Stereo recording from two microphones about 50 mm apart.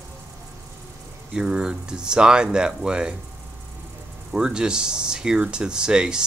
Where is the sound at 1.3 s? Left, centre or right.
Centre.